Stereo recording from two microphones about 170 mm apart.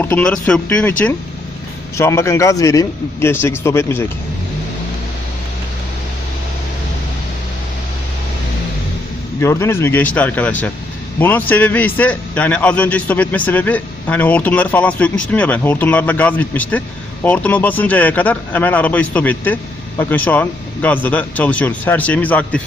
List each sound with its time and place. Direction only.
0.0 s speech: 10° left (ahead or behind)
9.4 s speech: 15° left (ahead or behind)